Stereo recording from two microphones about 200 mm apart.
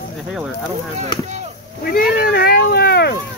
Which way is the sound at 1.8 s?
45° left (ahead or behind).